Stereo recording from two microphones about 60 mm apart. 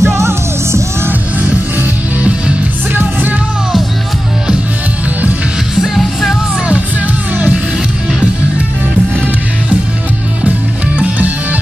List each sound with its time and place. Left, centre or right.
0.0 s music: right
2.9 s music: right
5.8 s music: centre
11.0 s music: right